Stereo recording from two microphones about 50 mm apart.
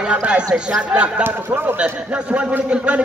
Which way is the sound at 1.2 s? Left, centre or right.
Right.